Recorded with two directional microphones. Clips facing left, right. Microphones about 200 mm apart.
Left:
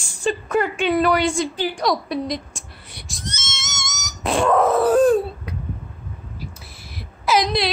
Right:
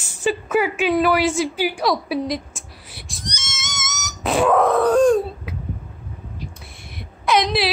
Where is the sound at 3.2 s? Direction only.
10° right (ahead or behind).